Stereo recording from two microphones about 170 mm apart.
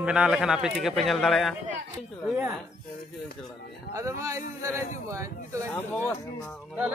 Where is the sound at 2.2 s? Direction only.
10° right (ahead or behind).